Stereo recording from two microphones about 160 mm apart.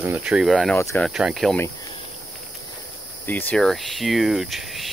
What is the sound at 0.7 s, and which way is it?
Speech, 15° left (ahead or behind).